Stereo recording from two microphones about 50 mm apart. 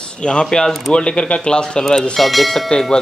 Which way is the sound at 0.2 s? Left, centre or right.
Centre.